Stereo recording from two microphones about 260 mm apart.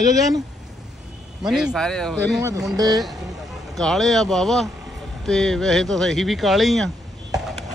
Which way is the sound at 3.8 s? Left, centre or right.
Centre.